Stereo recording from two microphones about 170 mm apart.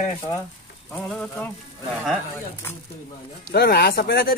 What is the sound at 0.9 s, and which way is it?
Speech, 5° left (ahead or behind).